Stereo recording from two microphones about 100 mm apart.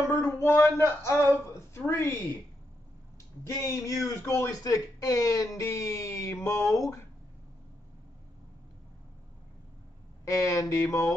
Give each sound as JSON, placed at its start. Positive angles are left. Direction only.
{"t": 0.1, "sound": "a woman's voice", "side_deg": 25}
{"t": 3.6, "sound": "speech", "side_deg": 35}
{"t": 10.2, "sound": "speech", "side_deg": 35}